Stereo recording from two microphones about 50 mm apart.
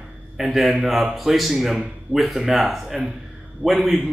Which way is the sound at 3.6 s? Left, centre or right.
Right.